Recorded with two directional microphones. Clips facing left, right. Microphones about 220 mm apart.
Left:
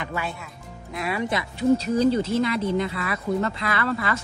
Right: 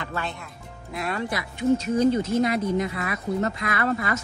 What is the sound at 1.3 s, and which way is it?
Speech, 30° left (ahead or behind).